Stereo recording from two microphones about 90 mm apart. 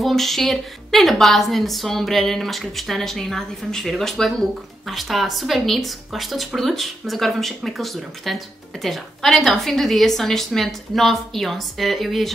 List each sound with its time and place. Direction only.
0.0 s a woman's voice: centre (ahead or behind)